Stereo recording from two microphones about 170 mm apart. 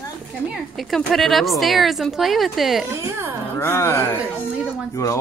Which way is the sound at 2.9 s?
15° right (ahead or behind).